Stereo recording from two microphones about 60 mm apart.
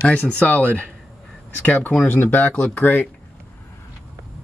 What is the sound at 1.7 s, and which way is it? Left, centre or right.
Speech, left.